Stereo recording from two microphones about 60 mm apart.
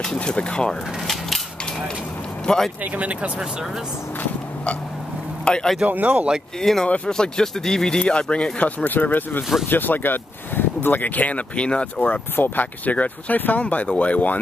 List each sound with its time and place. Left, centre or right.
0.0 s speech: centre
2.4 s speech: centre
2.8 s speech: right
5.4 s speech: centre
5.8 s speech: right
6.6 s speech: centre
12.1 s speech: left